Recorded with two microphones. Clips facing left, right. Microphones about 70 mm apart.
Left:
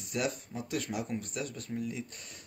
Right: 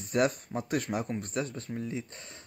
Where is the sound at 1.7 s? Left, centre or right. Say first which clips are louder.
Left 2 dB; centre.